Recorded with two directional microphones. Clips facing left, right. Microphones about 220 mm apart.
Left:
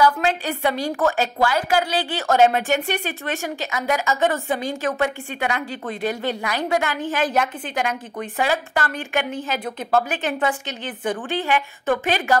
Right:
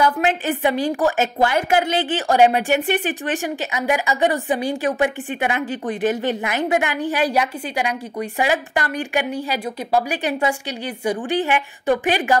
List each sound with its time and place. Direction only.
0.0 s a woman's voice: 20° right (ahead or behind)